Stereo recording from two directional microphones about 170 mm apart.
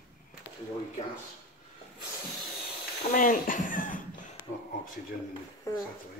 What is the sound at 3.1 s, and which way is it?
Speech, 55° left (ahead or behind).